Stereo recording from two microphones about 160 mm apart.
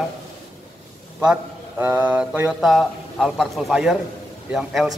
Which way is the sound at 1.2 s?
10° right (ahead or behind).